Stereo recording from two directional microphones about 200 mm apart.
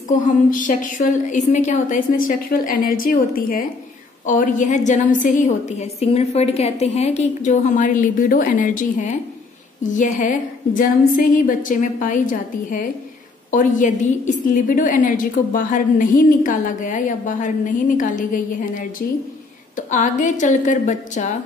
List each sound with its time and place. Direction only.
0.3 s a woman's voice: 40° left (ahead or behind)